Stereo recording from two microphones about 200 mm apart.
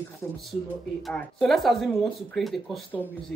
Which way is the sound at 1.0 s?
Centre (ahead or behind).